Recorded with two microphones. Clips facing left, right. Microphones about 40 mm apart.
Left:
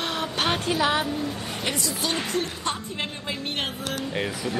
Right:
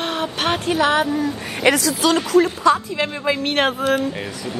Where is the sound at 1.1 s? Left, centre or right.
Right.